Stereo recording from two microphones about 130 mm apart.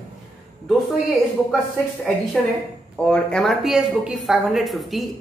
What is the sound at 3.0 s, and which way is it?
Speech, 5° left (ahead or behind).